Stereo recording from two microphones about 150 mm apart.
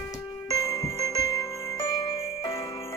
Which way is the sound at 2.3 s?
35° left (ahead or behind).